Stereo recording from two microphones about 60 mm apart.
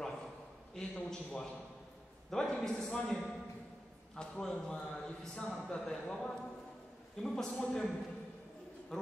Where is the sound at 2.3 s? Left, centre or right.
Centre.